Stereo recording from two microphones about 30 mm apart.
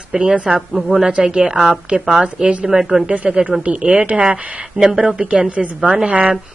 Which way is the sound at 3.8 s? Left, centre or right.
Right.